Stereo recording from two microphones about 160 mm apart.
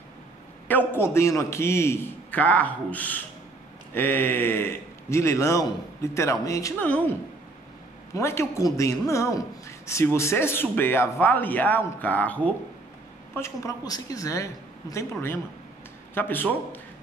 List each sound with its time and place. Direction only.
0.7 s a man's voice: 10° left (ahead or behind)
8.1 s a man's voice: 15° left (ahead or behind)